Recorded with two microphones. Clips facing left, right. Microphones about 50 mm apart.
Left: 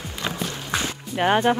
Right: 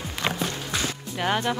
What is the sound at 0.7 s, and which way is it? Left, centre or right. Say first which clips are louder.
Music: left 3 dB; left.